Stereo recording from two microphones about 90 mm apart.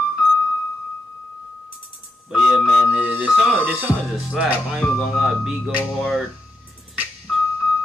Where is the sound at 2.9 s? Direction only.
15° right (ahead or behind).